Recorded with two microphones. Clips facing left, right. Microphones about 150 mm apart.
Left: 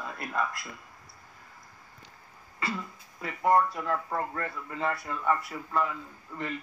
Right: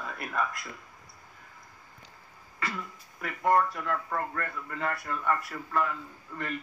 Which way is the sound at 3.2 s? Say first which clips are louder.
Left 1 dB; 20° left (ahead or behind).